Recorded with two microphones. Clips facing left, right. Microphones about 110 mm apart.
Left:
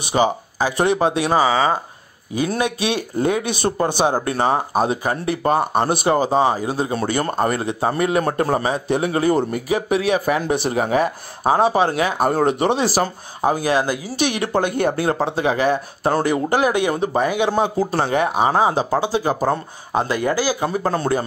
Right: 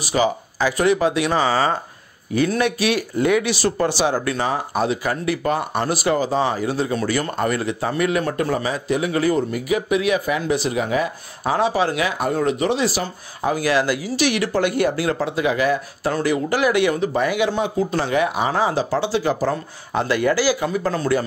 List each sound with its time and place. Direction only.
0.1 s speech: 20° left (ahead or behind)
2.3 s speech: 20° left (ahead or behind)
4.0 s speech: 40° left (ahead or behind); by 7.0 s 25° left (ahead or behind)
7.0 s speech: 35° left (ahead or behind)
11.7 s speech: 30° left (ahead or behind)
13.5 s speech: 25° left (ahead or behind)
14.6 s speech: 45° left (ahead or behind)
15.2 s speech: 30° left (ahead or behind)
16.9 s speech: 35° left (ahead or behind)
18.6 s speech: 20° left (ahead or behind)
19.5 s speech: 30° left (ahead or behind)